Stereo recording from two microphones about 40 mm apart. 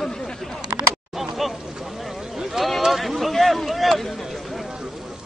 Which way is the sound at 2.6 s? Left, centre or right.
Centre.